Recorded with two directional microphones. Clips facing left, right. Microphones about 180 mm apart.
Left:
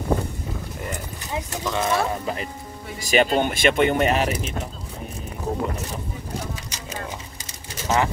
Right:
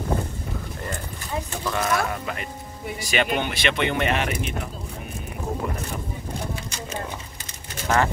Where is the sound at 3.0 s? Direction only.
40° left (ahead or behind).